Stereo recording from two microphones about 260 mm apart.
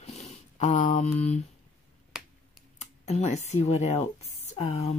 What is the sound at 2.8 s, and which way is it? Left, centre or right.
Speech, left.